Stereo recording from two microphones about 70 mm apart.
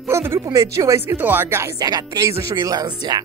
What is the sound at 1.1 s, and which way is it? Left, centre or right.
Speech, right.